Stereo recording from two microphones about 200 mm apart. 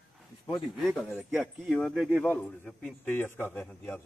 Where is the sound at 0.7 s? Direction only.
Centre (ahead or behind).